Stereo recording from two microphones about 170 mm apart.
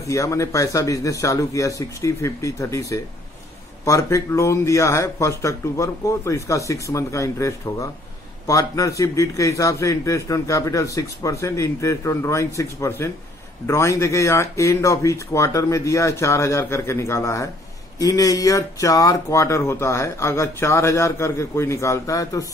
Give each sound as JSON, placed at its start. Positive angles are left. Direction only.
{"t": 0.1, "sound": "a man's voice", "side_deg": 20}